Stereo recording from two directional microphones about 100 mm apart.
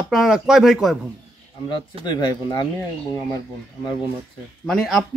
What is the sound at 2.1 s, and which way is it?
Speech, 45° left (ahead or behind).